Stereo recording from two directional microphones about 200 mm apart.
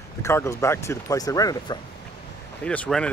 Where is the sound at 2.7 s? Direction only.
5° left (ahead or behind).